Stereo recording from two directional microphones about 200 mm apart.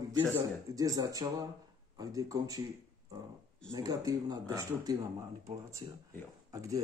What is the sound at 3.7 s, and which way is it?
Speech, 15° right (ahead or behind).